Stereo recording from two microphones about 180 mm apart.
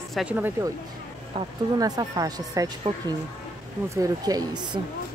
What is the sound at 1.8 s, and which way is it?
Speech, 20° right (ahead or behind).